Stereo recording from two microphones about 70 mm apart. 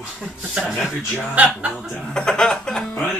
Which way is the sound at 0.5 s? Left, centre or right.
Centre.